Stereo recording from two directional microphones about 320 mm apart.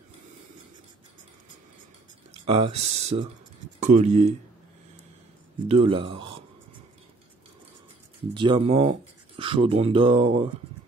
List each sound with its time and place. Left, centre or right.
2.4 s speech: centre
5.7 s speech: centre
8.4 s speech: centre